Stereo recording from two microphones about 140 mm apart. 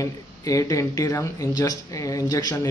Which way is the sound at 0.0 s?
25° left (ahead or behind).